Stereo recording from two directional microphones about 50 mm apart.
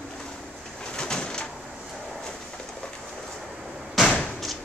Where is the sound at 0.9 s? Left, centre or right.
Centre.